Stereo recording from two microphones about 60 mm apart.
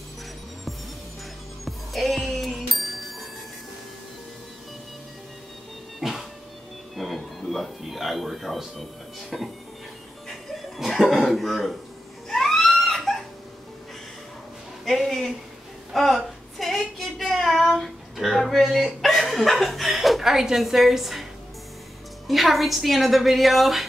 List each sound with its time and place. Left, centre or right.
1.6 s music: centre
5.9 s music: centre
10.9 s throat clearing: centre
12.3 s a sound: centre
14.9 s a sound: centre
22.3 s a woman's voice: centre